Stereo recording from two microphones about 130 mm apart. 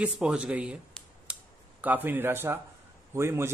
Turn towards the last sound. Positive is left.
turn(degrees=-20)  # may be behind; listen again after turning